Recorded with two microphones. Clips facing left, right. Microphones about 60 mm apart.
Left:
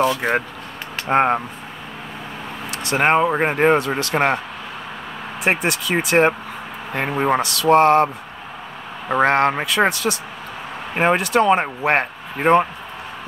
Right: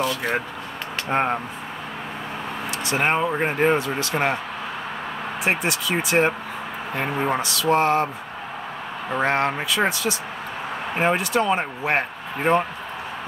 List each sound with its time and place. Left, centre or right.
1.0 s speech: left
2.7 s a man's voice: left
5.4 s a man's voice: left
9.1 s a man's voice: left